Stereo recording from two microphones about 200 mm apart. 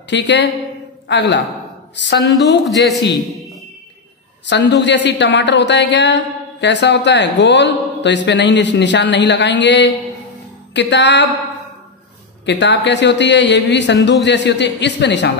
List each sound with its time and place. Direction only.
0.1 s a woman's voice: 60° left (ahead or behind)
2.7 s a man's voice: centre (ahead or behind)
4.5 s a woman's voice: 60° left (ahead or behind)
12.4 s a woman's voice: 60° left (ahead or behind)